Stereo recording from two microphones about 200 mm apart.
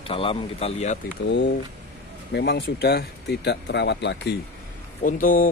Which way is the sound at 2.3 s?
55° left (ahead or behind).